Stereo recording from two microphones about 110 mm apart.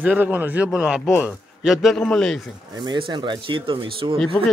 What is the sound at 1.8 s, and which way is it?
Speech, 5° left (ahead or behind).